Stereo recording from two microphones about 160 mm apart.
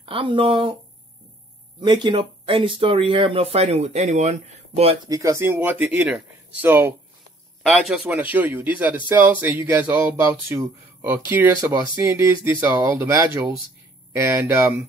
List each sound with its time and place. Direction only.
0.0 s speech: 35° right (ahead or behind)
1.8 s speech: 30° right (ahead or behind)
5.0 s a man's voice: 20° right (ahead or behind)